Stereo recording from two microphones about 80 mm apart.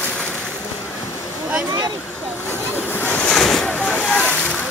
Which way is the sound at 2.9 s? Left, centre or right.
Left.